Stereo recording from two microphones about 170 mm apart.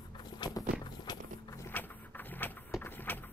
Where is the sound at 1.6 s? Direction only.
10° left (ahead or behind).